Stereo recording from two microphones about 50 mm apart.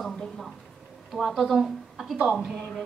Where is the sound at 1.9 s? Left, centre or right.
Centre.